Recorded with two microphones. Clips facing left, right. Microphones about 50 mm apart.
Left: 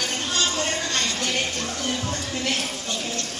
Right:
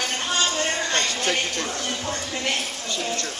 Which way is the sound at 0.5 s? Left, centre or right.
Right.